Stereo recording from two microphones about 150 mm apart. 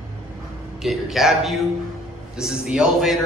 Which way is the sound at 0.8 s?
Centre (ahead or behind).